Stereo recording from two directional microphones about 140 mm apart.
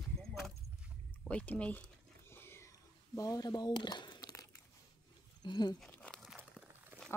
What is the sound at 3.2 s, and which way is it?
Speech, 25° left (ahead or behind).